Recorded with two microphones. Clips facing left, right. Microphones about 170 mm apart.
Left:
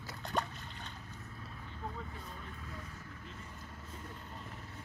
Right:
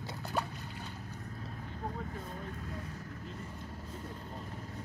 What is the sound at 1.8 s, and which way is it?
Vehicle, 40° right (ahead or behind).